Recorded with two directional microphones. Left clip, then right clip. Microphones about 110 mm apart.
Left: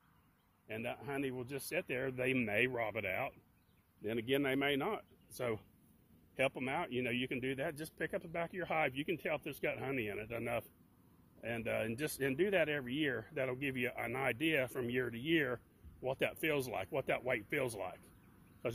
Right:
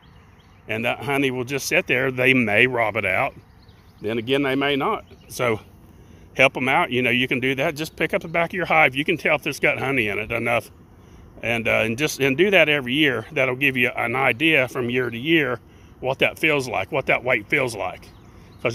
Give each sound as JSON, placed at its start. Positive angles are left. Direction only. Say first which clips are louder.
{"t": 0.7, "sound": "speech", "louder": "right 19 dB", "side_deg": -20}
{"t": 0.9, "sound": "speech", "louder": "right 18 dB", "side_deg": -40}
{"t": 4.0, "sound": "speech", "louder": "right 14 dB", "side_deg": 0}
{"t": 6.3, "sound": "speech", "louder": "right 19 dB", "side_deg": -25}